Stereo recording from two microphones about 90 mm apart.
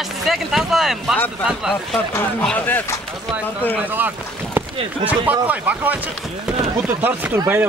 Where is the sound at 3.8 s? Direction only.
20° right (ahead or behind).